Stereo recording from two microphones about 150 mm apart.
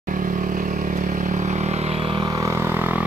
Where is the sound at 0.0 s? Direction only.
65° right (ahead or behind); by 2.2 s 40° right (ahead or behind).